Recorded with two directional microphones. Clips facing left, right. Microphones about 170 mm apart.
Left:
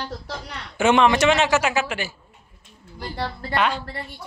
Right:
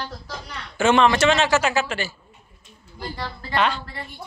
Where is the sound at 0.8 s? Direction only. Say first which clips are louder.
Even; 15° left (ahead or behind).